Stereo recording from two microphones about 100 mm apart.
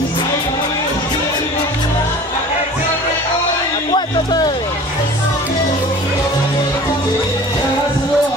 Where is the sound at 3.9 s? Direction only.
50° left (ahead or behind).